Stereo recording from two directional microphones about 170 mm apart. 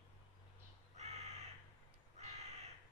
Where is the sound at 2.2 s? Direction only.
40° right (ahead or behind).